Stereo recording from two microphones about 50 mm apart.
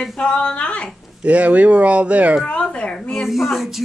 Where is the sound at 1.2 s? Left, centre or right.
Right.